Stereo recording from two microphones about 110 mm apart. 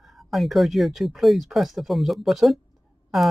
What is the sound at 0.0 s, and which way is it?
Speech, centre (ahead or behind).